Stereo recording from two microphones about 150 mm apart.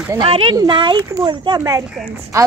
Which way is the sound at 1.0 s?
20° right (ahead or behind).